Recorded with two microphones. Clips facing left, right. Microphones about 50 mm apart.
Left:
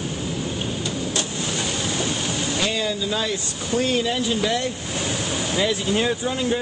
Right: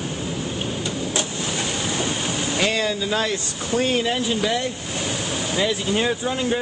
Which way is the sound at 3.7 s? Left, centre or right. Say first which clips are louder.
Right 1 dB; right.